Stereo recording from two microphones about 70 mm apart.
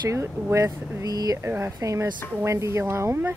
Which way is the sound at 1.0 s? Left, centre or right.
Right.